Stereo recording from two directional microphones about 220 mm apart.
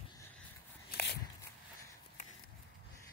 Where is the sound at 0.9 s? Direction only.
50° left (ahead or behind).